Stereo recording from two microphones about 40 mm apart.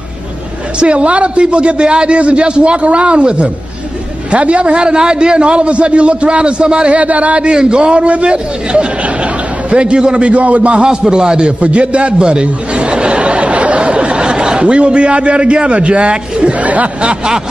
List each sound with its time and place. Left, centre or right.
0.7 s a man's voice: right
10.3 s a man's voice: right
10.9 s a man's voice: centre
16.5 s a man's voice: right
17.0 s a man's voice: right